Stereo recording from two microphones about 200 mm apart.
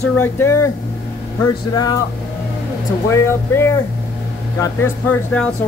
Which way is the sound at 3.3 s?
10° left (ahead or behind).